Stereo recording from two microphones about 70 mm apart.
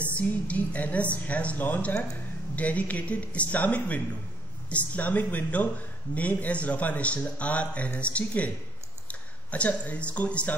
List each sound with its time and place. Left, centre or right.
0.1 s a man's voice: centre